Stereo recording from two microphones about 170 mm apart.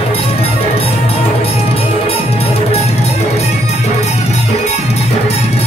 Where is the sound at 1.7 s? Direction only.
35° left (ahead or behind).